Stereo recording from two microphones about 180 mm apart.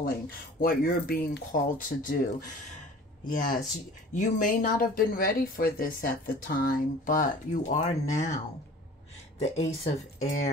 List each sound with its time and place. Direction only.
0.6 s speech: 55° left (ahead or behind)
3.3 s speech: 50° left (ahead or behind)
9.4 s speech: 35° left (ahead or behind)